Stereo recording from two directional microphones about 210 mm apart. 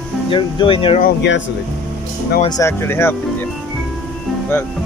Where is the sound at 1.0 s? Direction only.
55° left (ahead or behind).